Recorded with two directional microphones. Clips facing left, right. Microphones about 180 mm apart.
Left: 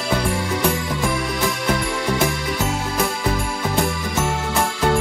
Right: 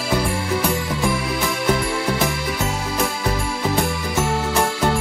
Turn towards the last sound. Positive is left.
turn(degrees=0)  # may be behind; listen again after turning